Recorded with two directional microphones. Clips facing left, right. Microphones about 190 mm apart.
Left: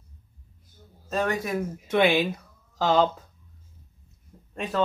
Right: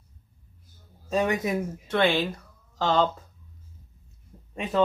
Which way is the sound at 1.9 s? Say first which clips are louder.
Left 2 dB; 10° left (ahead or behind).